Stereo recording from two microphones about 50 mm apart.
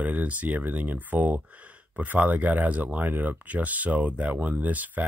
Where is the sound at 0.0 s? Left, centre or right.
Right.